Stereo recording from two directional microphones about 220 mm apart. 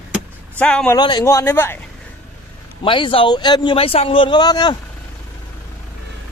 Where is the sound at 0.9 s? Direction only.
20° left (ahead or behind).